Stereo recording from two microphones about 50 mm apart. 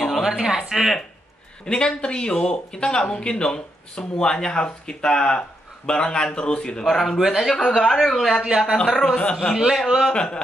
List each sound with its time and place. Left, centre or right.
0.2 s speech: centre
1.7 s speech: centre
6.9 s speech: centre
7.5 s speech: centre
8.5 s a man's voice: centre
8.8 s speech: centre
9.1 s a man's voice: centre
9.8 s a man's voice: centre
10.1 s a man's voice: centre